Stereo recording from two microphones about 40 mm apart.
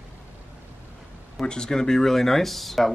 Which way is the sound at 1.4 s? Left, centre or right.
Left.